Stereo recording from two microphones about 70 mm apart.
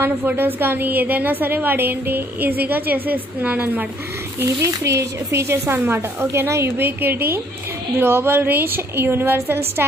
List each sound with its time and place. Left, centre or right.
0.0 s a woman's voice: right
4.6 s speech: right